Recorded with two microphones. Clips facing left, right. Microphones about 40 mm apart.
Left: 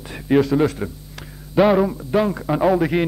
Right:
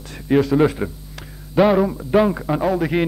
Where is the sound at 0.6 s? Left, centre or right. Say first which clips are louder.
Right 2 dB; centre.